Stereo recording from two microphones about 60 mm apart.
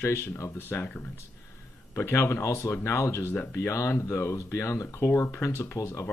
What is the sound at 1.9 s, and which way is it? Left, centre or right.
Speech, left.